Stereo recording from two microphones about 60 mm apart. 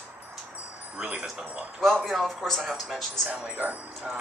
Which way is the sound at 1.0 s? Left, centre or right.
Centre.